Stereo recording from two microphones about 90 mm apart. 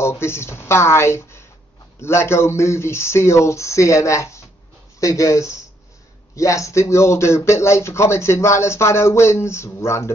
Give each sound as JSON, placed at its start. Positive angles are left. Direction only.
{"t": 0.0, "sound": "speech", "side_deg": 30}